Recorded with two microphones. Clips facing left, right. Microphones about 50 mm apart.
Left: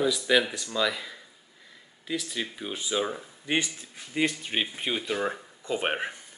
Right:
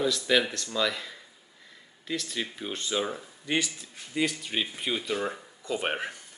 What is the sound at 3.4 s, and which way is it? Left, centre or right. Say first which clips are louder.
Speech: left 1 dB; left.